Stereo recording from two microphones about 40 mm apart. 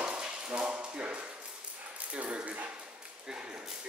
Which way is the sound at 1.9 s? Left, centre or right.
Right.